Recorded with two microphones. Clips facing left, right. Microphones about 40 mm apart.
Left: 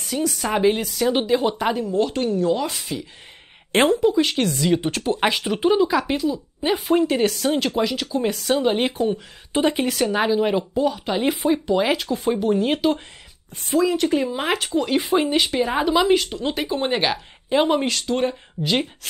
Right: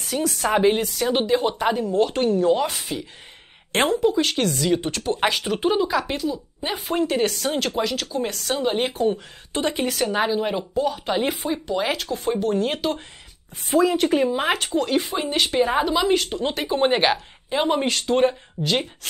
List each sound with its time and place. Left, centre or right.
0.0 s speech: centre
3.7 s speech: centre
4.8 s speech: centre
5.1 s speech: centre
13.9 s speech: centre
14.3 s speech: centre
14.8 s speech: centre
16.3 s speech: centre
17.5 s speech: centre
17.8 s speech: centre
18.6 s speech: centre